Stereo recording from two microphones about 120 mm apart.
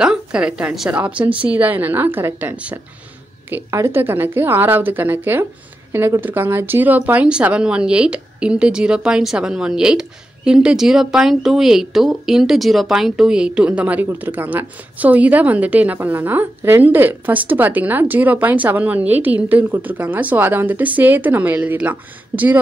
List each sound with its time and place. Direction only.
0.0 s a woman's voice: 5° right (ahead or behind)